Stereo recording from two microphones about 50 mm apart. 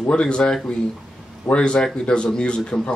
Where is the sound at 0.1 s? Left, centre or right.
Centre.